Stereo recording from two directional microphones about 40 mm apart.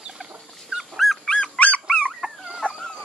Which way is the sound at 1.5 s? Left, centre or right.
Left.